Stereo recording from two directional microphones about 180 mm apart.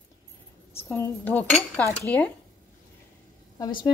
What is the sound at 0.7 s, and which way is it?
Speech, 15° left (ahead or behind).